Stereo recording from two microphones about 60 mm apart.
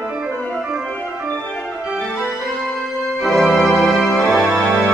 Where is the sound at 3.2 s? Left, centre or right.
Centre.